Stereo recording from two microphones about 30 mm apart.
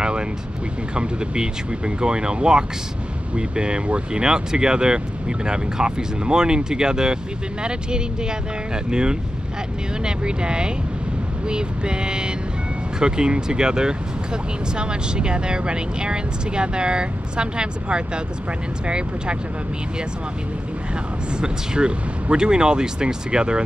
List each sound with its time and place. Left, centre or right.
0.9 s speech: right
10.0 s speech: right
21.4 s speech: right